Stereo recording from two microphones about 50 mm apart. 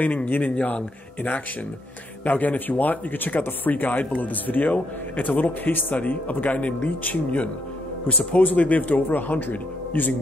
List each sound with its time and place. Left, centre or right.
0.0 s speech: left